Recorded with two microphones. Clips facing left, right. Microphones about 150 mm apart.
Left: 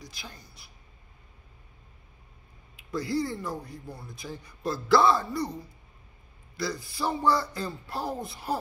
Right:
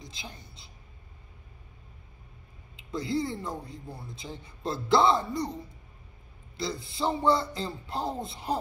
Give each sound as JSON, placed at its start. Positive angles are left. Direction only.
{"t": 0.0, "sound": "a woman's voice", "side_deg": -20}
{"t": 2.7, "sound": "speech", "side_deg": -20}